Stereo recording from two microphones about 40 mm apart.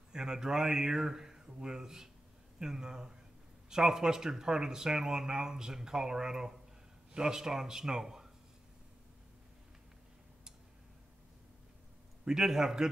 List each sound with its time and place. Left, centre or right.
0.1 s speech: centre
12.3 s speech: centre